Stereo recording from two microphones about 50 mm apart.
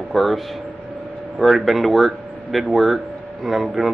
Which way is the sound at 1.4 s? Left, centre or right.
Centre.